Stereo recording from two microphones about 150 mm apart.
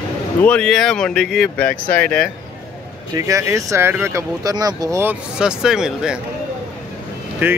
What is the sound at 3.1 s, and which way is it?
Speech, 20° right (ahead or behind).